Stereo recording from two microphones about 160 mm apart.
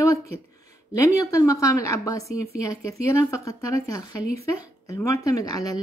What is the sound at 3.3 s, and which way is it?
Speech, 20° left (ahead or behind).